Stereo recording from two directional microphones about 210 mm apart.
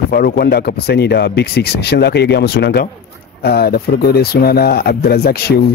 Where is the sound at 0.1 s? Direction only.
50° left (ahead or behind).